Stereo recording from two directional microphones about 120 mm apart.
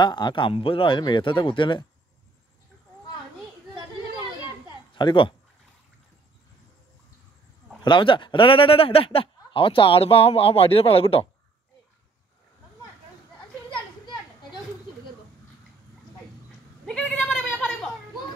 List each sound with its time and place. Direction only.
0.0 s speech: 40° left (ahead or behind)
4.9 s speech: 40° left (ahead or behind)
7.8 s speech: 45° left (ahead or behind)
16.8 s a sound: 10° left (ahead or behind)
17.6 s children playing: 5° left (ahead or behind)